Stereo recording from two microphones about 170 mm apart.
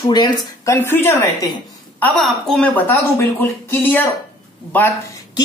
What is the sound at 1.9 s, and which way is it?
A woman's voice, 5° left (ahead or behind).